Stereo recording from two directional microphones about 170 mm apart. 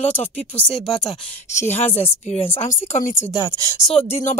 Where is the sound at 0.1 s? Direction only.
10° left (ahead or behind).